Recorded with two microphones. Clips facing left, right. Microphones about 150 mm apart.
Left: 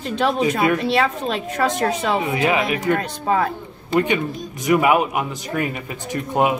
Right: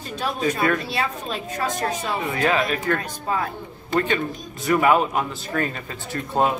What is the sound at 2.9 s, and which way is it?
Speech, 65° left (ahead or behind).